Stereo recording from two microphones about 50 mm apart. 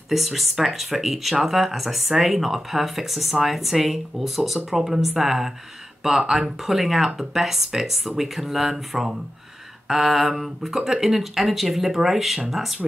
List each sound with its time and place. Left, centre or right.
0.1 s speech: centre